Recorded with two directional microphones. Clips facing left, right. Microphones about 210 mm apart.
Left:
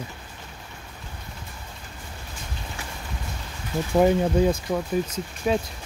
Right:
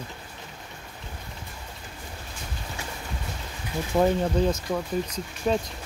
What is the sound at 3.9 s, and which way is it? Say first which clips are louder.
Speech: left 3 dB; 15° left (ahead or behind).